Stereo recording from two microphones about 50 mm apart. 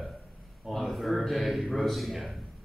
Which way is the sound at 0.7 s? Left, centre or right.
Centre.